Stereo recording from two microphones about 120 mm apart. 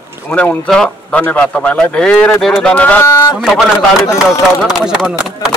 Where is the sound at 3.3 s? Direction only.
Centre (ahead or behind).